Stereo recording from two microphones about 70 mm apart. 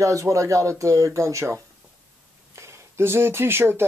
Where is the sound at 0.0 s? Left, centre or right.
Right.